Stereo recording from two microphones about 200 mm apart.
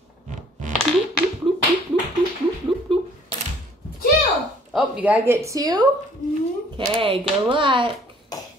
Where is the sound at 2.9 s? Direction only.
25° right (ahead or behind).